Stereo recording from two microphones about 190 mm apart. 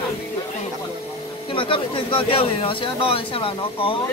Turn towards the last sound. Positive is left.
turn(degrees=30)  # may be behind; listen again after turning